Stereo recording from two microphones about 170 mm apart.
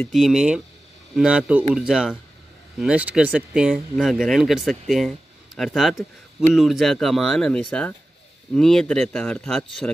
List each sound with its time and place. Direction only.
0.0 s speech: centre (ahead or behind)